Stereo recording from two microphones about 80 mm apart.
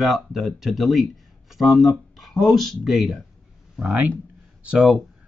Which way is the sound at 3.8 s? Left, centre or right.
Centre.